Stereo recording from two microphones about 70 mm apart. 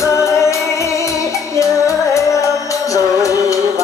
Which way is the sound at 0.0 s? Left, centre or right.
Left.